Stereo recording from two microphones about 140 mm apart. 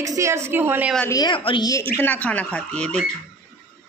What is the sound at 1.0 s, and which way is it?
Speech, 25° left (ahead or behind).